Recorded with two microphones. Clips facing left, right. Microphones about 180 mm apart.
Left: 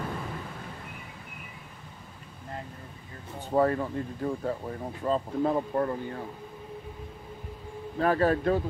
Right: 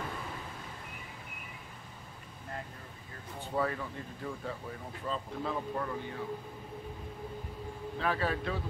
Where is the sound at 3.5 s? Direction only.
45° left (ahead or behind).